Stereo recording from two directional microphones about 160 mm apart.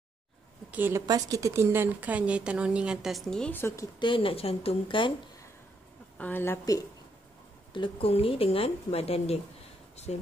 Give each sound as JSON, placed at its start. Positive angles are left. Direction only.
{"t": 0.7, "sound": "a woman's voice", "side_deg": -10}
{"t": 1.0, "sound": "a woman's voice", "side_deg": -20}
{"t": 4.0, "sound": "speech", "side_deg": 35}
{"t": 6.1, "sound": "a woman's voice", "side_deg": 10}
{"t": 7.7, "sound": "speech", "side_deg": 30}